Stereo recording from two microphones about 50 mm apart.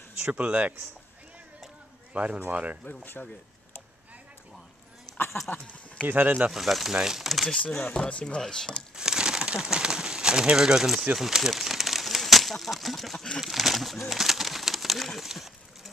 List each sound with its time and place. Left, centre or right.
0.2 s speech: right
0.5 s speech: right
2.1 s speech: right
2.8 s speech: left
5.1 s a sound: left
6.0 s speech: right
6.5 s speech: centre
7.8 s speech: left
8.9 s crumpling: centre
9.5 s speech: centre